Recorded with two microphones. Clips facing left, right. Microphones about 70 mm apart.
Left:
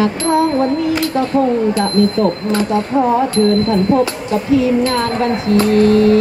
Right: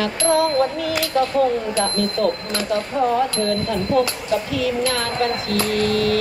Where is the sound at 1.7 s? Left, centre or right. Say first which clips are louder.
Left 7 dB; left.